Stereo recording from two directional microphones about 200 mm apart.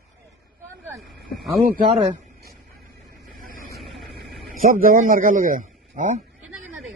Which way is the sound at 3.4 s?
45° right (ahead or behind).